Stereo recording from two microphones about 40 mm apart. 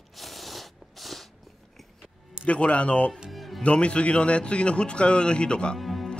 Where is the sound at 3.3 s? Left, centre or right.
Centre.